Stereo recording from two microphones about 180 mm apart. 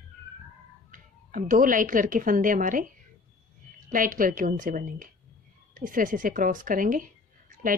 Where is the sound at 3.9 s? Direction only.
50° right (ahead or behind).